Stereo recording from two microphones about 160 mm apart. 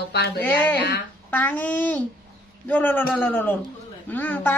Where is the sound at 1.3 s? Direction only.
10° left (ahead or behind).